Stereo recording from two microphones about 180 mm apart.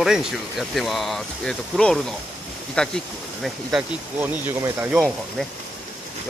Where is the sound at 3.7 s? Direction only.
10° right (ahead or behind).